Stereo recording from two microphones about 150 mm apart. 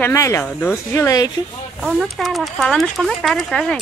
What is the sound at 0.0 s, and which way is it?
Speech, 20° left (ahead or behind).